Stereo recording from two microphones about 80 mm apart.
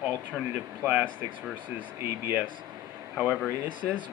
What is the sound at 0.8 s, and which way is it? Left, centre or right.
Speech, centre.